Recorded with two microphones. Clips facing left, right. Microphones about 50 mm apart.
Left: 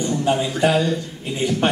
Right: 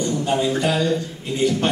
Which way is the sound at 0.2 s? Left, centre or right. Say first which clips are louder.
Left 2 dB; centre.